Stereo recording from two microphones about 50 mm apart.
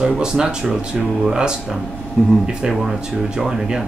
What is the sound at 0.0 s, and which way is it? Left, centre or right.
Speech, centre.